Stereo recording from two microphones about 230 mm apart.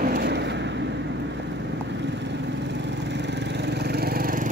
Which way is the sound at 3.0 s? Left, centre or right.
Right.